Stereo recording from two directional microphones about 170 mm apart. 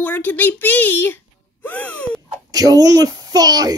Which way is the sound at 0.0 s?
10° left (ahead or behind).